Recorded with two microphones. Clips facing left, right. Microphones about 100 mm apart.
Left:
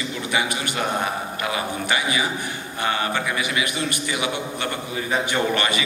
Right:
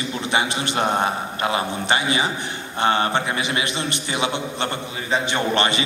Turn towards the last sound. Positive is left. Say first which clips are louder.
# right 1 dB
turn(degrees=-25)  # may be behind; listen again after turning